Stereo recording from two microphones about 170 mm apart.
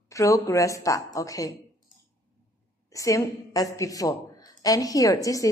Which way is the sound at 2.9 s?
20° left (ahead or behind).